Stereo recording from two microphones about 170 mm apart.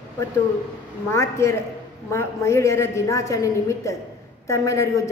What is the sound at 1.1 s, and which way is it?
A woman's voice, 15° left (ahead or behind).